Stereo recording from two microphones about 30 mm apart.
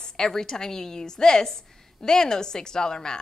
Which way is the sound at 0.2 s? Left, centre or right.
Centre.